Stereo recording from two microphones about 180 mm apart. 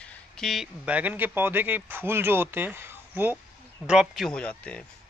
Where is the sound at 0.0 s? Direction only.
Centre (ahead or behind).